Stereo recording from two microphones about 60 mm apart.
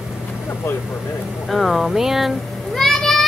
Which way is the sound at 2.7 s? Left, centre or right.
Centre.